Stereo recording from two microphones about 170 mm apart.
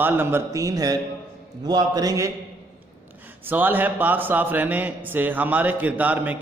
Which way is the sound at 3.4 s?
10° right (ahead or behind).